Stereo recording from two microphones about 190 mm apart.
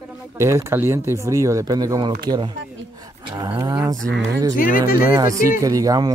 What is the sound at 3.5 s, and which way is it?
Speech, 15° right (ahead or behind).